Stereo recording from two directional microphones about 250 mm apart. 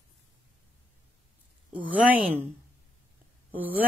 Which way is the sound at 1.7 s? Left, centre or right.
Centre.